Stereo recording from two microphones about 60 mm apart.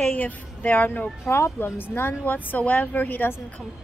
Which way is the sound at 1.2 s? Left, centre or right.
Left.